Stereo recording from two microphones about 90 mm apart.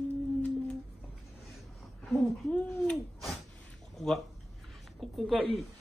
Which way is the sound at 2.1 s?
10° left (ahead or behind).